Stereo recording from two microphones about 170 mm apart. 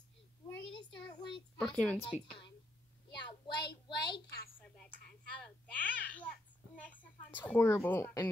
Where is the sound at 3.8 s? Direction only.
25° left (ahead or behind).